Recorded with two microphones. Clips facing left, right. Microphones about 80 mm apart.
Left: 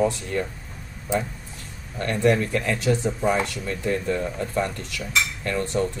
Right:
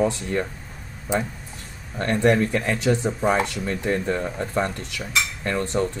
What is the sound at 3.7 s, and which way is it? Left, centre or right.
Speech, right.